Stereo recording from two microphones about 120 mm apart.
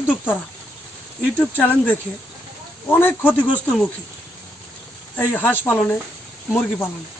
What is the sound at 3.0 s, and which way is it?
Speech, 15° left (ahead or behind).